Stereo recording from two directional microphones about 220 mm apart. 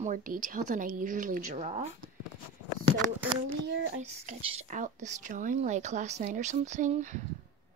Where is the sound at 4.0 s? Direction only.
30° right (ahead or behind).